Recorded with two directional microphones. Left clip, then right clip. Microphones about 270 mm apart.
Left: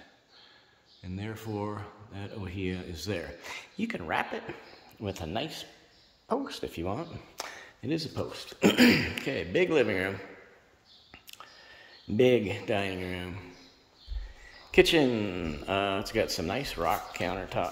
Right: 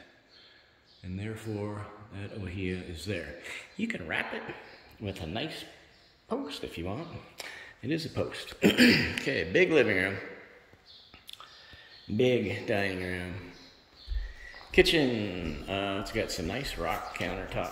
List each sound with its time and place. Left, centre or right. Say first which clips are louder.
1.0 s speech: even; centre
12.1 s speech: left 3 dB; centre
14.4 s speech: left 1 dB; centre